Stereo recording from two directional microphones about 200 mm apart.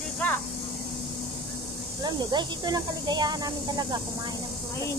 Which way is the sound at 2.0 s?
20° right (ahead or behind).